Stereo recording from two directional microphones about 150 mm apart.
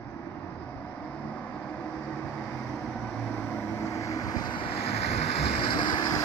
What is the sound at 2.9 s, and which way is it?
Vehicle, 5° left (ahead or behind).